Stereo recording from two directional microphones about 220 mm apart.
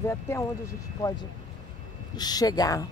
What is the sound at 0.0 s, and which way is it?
Speech, 10° left (ahead or behind).